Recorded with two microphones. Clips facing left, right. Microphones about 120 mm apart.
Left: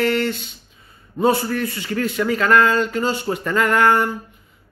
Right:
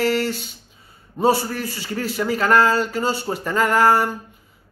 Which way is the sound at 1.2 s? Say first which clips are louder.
Even; 10° right (ahead or behind).